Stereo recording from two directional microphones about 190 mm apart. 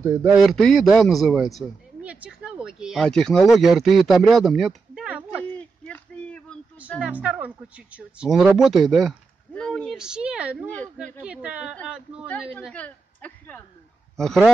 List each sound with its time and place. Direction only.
0.0 s speech: 15° right (ahead or behind)
0.4 s a man's voice: centre (ahead or behind)
5.4 s a sound: 10° left (ahead or behind)
7.0 s speech: 5° right (ahead or behind)